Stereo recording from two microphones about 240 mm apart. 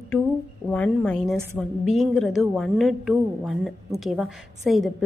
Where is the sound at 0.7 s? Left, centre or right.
Centre.